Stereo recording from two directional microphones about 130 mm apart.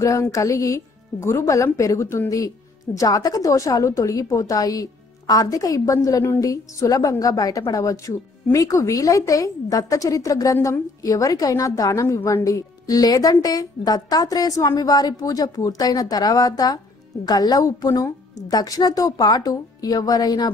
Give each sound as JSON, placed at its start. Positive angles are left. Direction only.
{"t": 0.0, "sound": "a woman's voice", "side_deg": 25}